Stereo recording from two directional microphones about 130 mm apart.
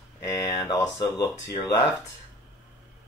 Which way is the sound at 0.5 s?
45° left (ahead or behind).